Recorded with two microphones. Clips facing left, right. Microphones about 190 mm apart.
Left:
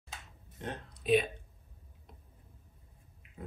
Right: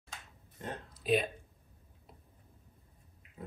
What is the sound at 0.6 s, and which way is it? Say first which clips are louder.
Speech: left 1 dB; centre (ahead or behind).